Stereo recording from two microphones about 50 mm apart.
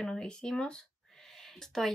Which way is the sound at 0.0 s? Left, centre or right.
Centre.